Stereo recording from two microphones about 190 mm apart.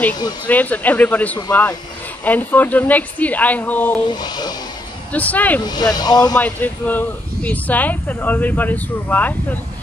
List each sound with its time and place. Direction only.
0.5 s speech: 10° left (ahead or behind)
4.1 s speech: 20° left (ahead or behind)
5.1 s speech: 10° left (ahead or behind)
5.6 s speech: 20° left (ahead or behind)
6.3 s speech: 10° left (ahead or behind)